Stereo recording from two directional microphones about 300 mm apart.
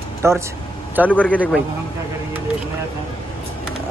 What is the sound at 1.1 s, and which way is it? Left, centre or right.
Speech, centre.